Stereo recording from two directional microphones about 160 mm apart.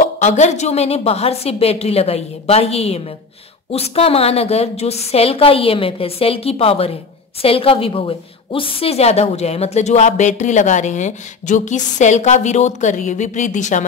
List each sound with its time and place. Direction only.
0.0 s a woman's voice: 50° left (ahead or behind)